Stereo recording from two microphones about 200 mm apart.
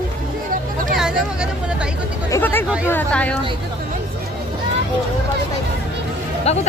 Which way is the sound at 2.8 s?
10° left (ahead or behind).